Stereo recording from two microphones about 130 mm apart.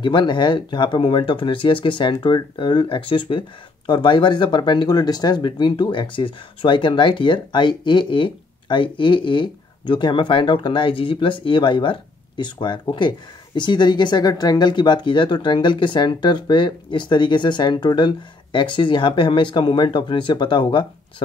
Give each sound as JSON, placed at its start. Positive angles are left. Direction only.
{"t": 0.0, "sound": "speech", "side_deg": 35}